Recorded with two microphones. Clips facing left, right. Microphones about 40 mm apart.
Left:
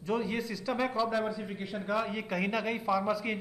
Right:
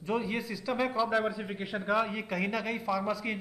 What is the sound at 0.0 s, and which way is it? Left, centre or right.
A man's voice, centre.